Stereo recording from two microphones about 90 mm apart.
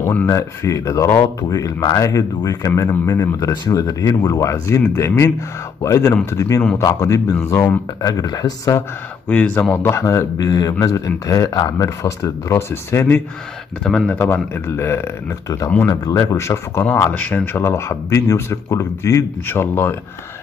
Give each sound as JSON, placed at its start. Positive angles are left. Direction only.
{"t": 0.0, "sound": "speech", "side_deg": 25}
{"t": 0.3, "sound": "speech", "side_deg": 35}
{"t": 8.1, "sound": "speech", "side_deg": 45}
{"t": 9.3, "sound": "speech", "side_deg": 15}
{"t": 9.8, "sound": "speech", "side_deg": 35}
{"t": 13.8, "sound": "speech", "side_deg": 5}
{"t": 14.1, "sound": "speech", "side_deg": 25}
{"t": 15.9, "sound": "speech", "side_deg": 40}
{"t": 17.1, "sound": "speech", "side_deg": 20}